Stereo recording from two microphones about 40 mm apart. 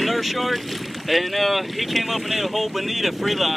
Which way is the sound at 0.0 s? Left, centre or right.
Centre.